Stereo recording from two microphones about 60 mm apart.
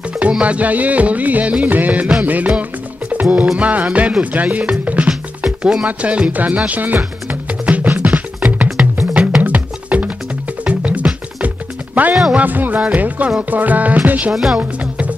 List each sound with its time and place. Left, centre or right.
0.3 s music: right
14.3 s speech: centre
14.6 s music: right